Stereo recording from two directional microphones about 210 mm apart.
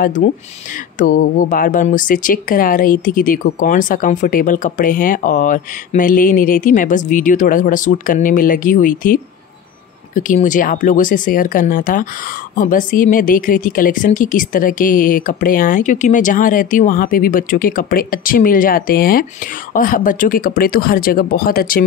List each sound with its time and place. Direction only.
0.0 s speech: 40° left (ahead or behind)